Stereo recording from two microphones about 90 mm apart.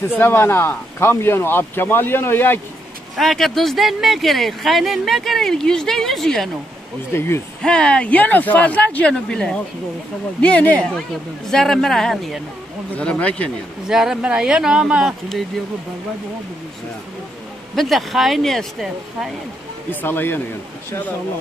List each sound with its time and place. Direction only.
0.2 s speech: 25° left (ahead or behind)
3.2 s speech: 5° left (ahead or behind)
7.2 s speech: 25° left (ahead or behind)
7.6 s speech: 10° left (ahead or behind)
11.5 s speech: 5° left (ahead or behind)
12.9 s speech: 15° left (ahead or behind)
13.8 s speech: 5° right (ahead or behind)
17.7 s speech: centre (ahead or behind)
19.9 s speech: 20° left (ahead or behind)